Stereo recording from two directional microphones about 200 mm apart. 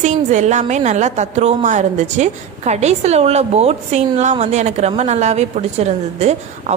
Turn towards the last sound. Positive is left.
turn(degrees=-35)  # may be behind; listen again after turning